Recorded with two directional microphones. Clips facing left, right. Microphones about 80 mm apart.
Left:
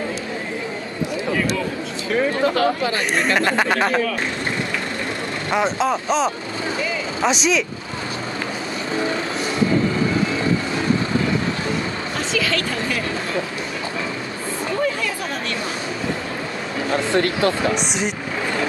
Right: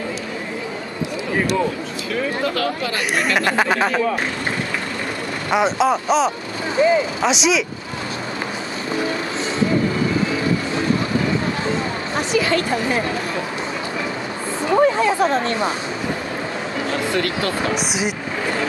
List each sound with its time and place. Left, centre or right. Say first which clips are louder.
2.4 s speech: left 3 dB; left
3.3 s speech: right 2 dB; centre
5.5 s speech: right 3 dB; centre
6.8 s speech: right 12 dB; right
7.2 s speech: left 1 dB; centre
12.2 s a sound: right 4 dB; right
15.0 s speech: right 9 dB; right
17.1 s speech: left 3 dB; left
17.7 s speech: right 1 dB; centre